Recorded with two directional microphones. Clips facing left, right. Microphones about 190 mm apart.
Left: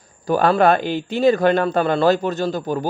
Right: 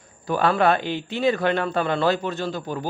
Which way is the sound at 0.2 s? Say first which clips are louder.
Left 4 dB; 40° left (ahead or behind).